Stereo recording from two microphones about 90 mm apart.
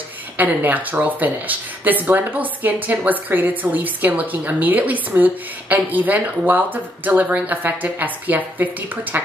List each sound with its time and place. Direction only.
0.4 s speech: 20° right (ahead or behind)